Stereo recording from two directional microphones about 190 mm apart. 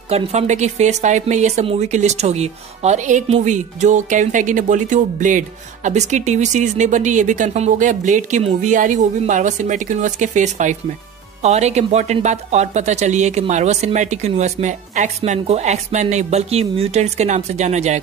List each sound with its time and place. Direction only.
0.1 s speech: 35° right (ahead or behind)